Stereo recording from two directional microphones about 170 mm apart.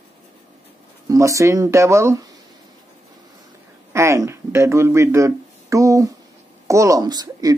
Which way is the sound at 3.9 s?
15° right (ahead or behind).